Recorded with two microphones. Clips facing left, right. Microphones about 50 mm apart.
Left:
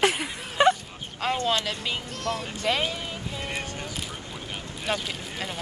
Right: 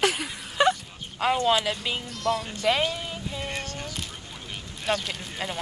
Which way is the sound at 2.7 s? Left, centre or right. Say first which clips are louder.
Right 2 dB; centre.